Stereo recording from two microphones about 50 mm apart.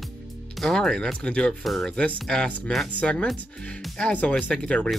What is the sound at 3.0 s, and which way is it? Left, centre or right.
Speech, left.